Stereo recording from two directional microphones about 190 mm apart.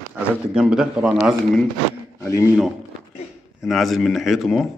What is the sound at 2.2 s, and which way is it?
Speech, 15° left (ahead or behind).